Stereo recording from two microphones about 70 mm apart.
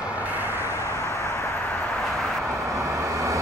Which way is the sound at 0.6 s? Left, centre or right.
Right.